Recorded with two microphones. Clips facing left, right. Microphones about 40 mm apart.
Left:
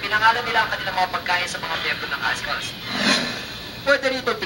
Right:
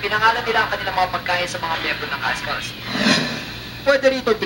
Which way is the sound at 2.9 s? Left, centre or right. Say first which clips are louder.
Right 3 dB; right.